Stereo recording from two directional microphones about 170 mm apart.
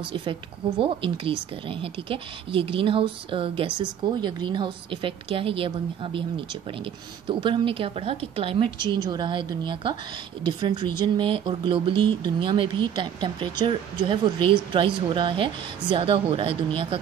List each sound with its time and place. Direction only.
0.1 s speech: 30° right (ahead or behind)
7.2 s speech: 30° right (ahead or behind)